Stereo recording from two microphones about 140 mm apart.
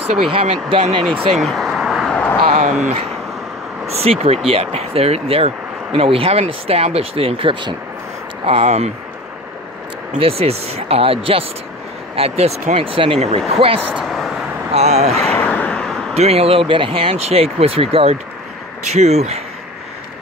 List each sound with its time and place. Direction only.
0.3 s speech: 40° right (ahead or behind)
1.3 s a sound: centre (ahead or behind)
2.6 s speech: 65° right (ahead or behind)
4.0 s speech: 45° right (ahead or behind)
10.1 s speech: 45° right (ahead or behind)
13.9 s vehicle: centre (ahead or behind)
14.7 s speech: 50° right (ahead or behind)
15.2 s vehicle: 10° left (ahead or behind)
16.2 s speech: 45° right (ahead or behind)